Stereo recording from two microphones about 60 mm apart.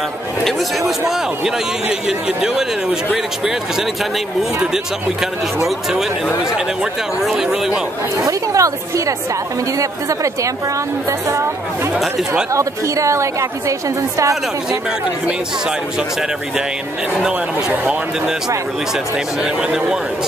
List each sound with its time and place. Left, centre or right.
0.4 s speech: centre
5.7 s speech: centre
8.3 s a woman's voice: right
17.1 s speech: centre
19.1 s speech: centre